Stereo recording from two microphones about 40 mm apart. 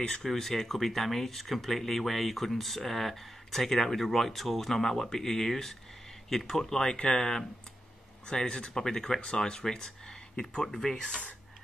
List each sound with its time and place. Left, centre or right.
0.2 s speech: centre
6.6 s speech: centre
8.5 s speech: centre